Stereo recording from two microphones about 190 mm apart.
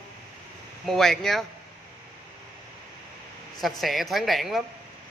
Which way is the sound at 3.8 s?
Centre (ahead or behind).